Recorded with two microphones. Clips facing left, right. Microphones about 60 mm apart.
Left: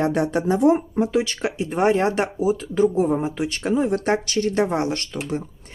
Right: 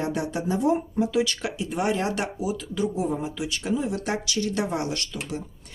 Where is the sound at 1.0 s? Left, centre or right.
Left.